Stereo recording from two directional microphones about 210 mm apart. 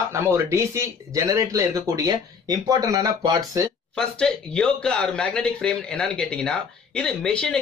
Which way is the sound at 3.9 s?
5° left (ahead or behind).